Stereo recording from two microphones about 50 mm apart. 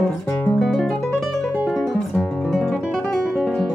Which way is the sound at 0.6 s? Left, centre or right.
Centre.